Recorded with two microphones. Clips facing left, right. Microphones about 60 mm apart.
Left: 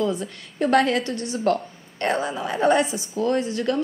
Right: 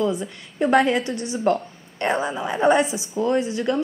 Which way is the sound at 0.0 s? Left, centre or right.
Centre.